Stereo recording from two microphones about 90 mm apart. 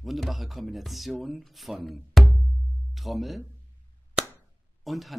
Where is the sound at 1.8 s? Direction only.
Centre (ahead or behind).